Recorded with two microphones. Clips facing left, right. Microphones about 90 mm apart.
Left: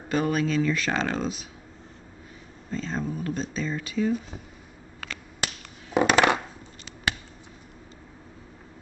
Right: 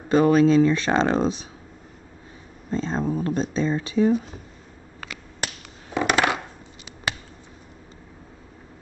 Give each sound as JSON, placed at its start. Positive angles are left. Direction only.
{"t": 0.1, "sound": "speech", "side_deg": -35}
{"t": 2.7, "sound": "speech", "side_deg": -35}
{"t": 5.9, "sound": "coin", "side_deg": 20}